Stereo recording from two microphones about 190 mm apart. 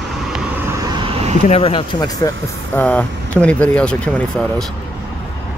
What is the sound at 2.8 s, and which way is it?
Speech, 10° left (ahead or behind).